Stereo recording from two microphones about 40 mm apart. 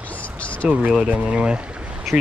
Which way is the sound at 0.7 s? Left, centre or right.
Right.